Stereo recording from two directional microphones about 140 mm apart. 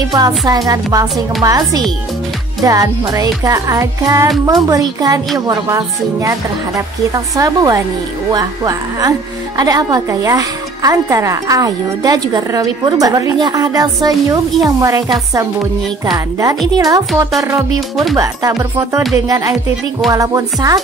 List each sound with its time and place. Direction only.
0.1 s speech: 25° right (ahead or behind)
7.3 s speech: 25° right (ahead or behind)
17.7 s speech: centre (ahead or behind)
18.1 s speech: 25° right (ahead or behind)